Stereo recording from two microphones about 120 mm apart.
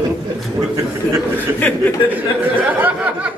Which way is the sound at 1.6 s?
15° left (ahead or behind).